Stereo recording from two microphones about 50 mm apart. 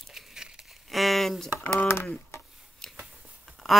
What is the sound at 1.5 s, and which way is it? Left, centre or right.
Speech, left.